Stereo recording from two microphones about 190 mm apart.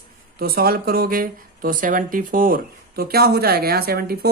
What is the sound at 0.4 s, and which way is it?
Speech, 50° right (ahead or behind).